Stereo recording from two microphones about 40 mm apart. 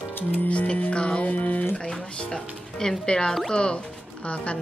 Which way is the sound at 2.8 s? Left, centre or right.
Centre.